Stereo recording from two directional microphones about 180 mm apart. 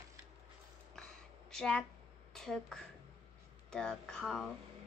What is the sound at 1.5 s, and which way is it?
A woman's voice, 5° left (ahead or behind).